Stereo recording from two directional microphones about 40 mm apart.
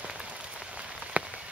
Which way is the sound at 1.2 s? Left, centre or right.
Right.